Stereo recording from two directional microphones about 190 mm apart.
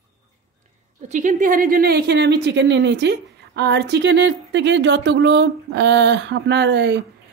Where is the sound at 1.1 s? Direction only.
45° right (ahead or behind); by 7.0 s 70° right (ahead or behind).